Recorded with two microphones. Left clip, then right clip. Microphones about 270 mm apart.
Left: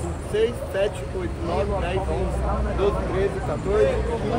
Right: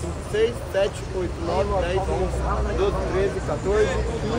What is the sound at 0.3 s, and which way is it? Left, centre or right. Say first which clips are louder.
Speech: right 1 dB; centre.